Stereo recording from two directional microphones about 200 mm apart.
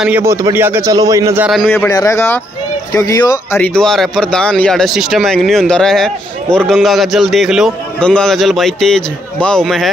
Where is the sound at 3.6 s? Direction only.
5° left (ahead or behind).